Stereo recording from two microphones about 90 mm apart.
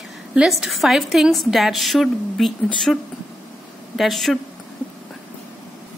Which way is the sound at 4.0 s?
Centre (ahead or behind).